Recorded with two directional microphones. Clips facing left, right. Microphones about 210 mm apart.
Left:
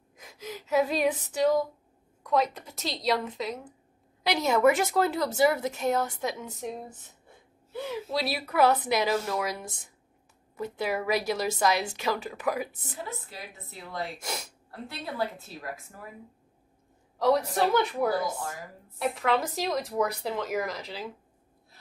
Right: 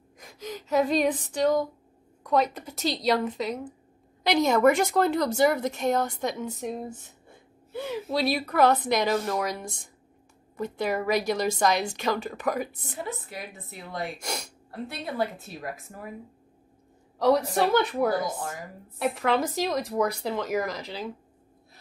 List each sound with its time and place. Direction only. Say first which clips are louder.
0.2 s speech: right 3 dB; 5° left (ahead or behind)
8.1 s speech: right 6 dB; 5° left (ahead or behind)
13.3 s a woman's voice: right 4 dB; 15° right (ahead or behind)
14.1 s speech: right 2 dB; centre (ahead or behind)
14.9 s a woman's voice: right 2 dB; 20° right (ahead or behind)
17.2 s speech: right 2 dB; centre (ahead or behind)